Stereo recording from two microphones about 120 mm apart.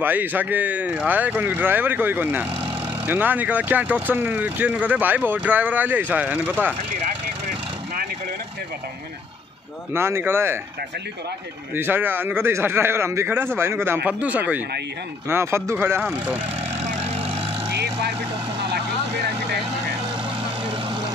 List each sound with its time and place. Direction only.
0.0 s speech: 15° right (ahead or behind)
9.9 s speech: 20° right (ahead or behind)
11.7 s speech: 15° right (ahead or behind)
17.0 s vehicle: 60° right (ahead or behind)
20.6 s vehicle: 45° right (ahead or behind)